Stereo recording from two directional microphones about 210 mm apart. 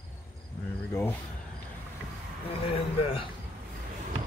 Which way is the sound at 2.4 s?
25° left (ahead or behind).